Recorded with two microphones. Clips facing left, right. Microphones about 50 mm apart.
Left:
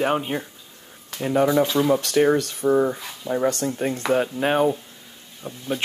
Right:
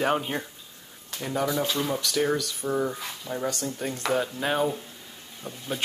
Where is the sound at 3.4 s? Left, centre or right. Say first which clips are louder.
Left 6 dB; left; by 5.6 s centre.